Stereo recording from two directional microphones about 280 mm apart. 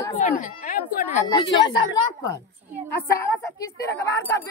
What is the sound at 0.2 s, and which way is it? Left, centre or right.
Speech, left.